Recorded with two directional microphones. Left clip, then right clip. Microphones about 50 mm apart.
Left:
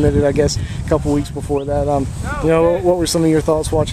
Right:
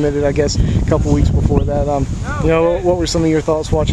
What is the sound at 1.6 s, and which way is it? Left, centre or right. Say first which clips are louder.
Speech: even; centre.